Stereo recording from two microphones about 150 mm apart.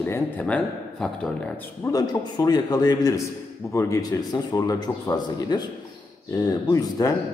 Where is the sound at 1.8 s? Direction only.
25° left (ahead or behind).